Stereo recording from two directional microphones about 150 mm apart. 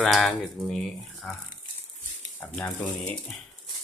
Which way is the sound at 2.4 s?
15° left (ahead or behind).